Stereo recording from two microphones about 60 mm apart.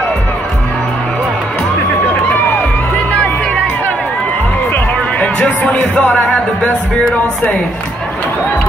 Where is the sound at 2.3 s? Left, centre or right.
Left.